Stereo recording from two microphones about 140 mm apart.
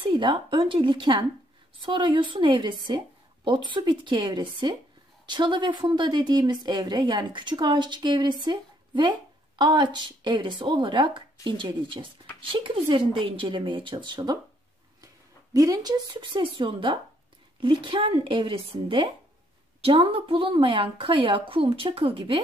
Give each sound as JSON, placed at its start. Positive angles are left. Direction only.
{"t": 0.0, "sound": "a woman's voice", "side_deg": -35}
{"t": 15.5, "sound": "a woman's voice", "side_deg": -25}